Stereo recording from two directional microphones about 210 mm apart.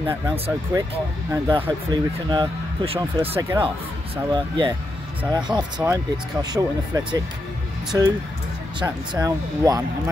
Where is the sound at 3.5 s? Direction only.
25° right (ahead or behind).